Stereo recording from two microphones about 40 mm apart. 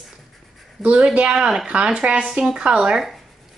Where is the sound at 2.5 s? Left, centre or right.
Right.